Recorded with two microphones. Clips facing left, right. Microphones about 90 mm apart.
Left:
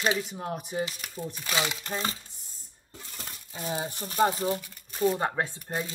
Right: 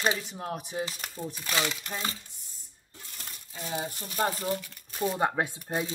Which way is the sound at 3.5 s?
35° left (ahead or behind).